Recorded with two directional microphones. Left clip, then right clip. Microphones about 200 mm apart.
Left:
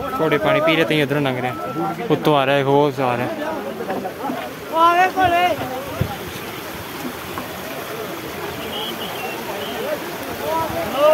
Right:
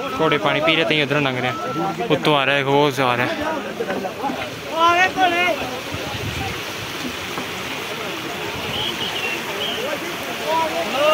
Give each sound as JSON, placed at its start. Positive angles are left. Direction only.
{"t": 0.2, "sound": "speech", "side_deg": 10}
{"t": 3.0, "sound": "a man's voice", "side_deg": 0}
{"t": 4.7, "sound": "a sound", "side_deg": 40}